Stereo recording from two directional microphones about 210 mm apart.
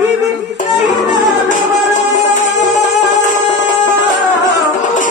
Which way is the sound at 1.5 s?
35° left (ahead or behind).